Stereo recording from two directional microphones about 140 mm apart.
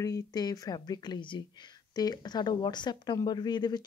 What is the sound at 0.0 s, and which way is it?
Speech, 25° left (ahead or behind).